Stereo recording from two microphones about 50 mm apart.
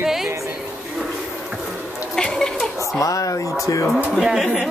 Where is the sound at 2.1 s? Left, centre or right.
Centre.